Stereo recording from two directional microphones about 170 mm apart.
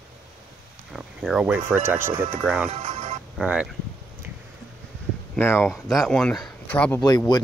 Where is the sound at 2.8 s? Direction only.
50° right (ahead or behind).